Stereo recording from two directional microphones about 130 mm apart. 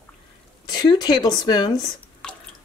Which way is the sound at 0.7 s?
30° left (ahead or behind).